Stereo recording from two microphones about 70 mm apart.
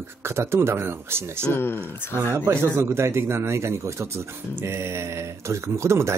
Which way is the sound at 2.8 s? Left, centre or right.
Right.